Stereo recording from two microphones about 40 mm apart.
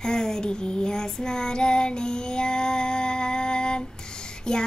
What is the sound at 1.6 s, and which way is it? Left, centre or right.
Female singing, left.